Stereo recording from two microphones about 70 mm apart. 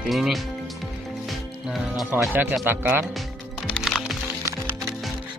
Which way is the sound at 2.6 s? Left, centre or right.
Right.